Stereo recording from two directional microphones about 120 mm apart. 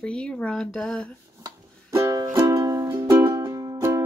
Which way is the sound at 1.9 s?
25° right (ahead or behind).